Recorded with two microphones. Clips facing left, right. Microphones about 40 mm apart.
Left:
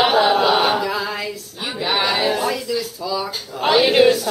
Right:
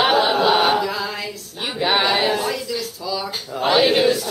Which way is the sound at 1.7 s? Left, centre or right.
Centre.